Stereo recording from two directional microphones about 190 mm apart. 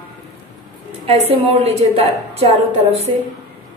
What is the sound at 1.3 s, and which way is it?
A woman's voice, 35° right (ahead or behind).